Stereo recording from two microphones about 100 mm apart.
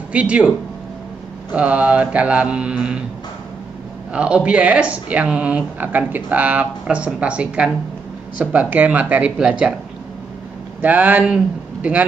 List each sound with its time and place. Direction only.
0.1 s speech: 10° right (ahead or behind)
1.5 s speech: 15° right (ahead or behind)
4.1 s speech: 10° right (ahead or behind)
10.8 s speech: 15° right (ahead or behind)